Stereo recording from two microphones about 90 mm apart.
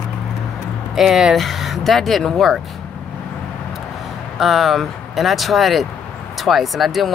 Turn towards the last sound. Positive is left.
turn(degrees=0)  # may be behind; listen again after turning